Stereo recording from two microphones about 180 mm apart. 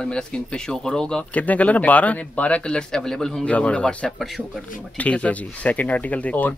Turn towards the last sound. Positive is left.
turn(degrees=5)  # may be behind; listen again after turning